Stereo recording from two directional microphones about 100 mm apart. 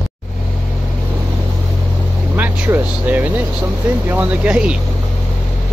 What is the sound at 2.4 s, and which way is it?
Vehicle, 20° right (ahead or behind).